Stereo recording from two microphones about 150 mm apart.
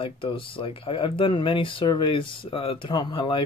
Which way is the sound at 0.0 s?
35° left (ahead or behind).